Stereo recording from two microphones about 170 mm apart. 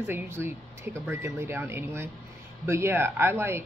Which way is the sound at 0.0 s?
15° right (ahead or behind).